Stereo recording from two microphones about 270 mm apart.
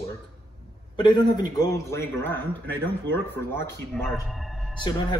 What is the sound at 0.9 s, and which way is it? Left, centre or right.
A man's voice, centre.